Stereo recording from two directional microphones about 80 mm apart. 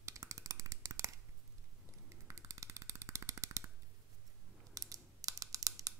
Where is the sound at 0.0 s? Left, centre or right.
Right.